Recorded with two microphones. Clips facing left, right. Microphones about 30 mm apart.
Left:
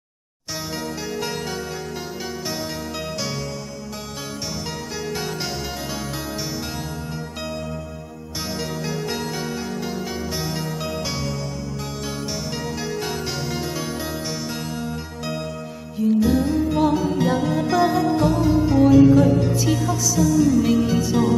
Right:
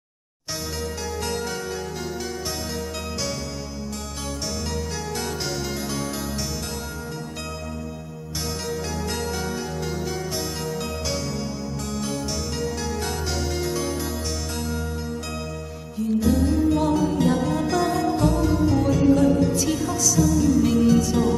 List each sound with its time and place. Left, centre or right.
5.2 s music: centre
8.4 s music: centre
16.0 s music: centre